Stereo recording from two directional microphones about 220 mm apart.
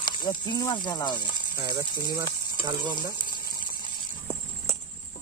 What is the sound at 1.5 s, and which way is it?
Speech, 20° right (ahead or behind).